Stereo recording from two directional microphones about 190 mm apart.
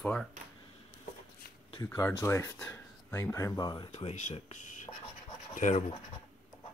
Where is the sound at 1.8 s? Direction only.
15° left (ahead or behind).